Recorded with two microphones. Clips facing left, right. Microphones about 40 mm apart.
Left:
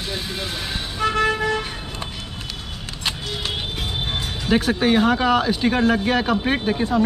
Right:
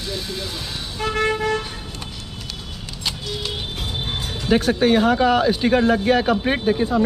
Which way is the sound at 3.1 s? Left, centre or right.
Left.